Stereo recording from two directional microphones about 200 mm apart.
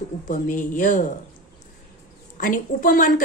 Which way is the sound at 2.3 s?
40° left (ahead or behind).